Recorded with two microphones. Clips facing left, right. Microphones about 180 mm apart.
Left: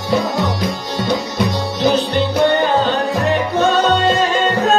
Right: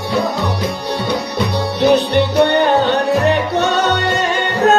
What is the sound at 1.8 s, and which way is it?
Music, 65° right (ahead or behind).